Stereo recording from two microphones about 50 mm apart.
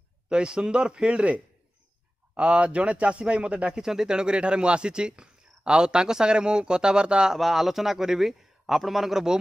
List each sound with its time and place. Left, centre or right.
0.3 s a man's voice: centre
7.3 s a man's voice: centre